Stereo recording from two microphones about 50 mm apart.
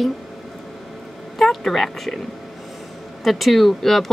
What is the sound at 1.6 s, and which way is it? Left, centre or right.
Speech, centre.